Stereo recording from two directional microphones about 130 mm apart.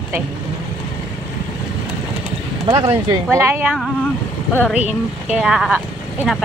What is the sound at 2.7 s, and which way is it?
Speech, 25° right (ahead or behind).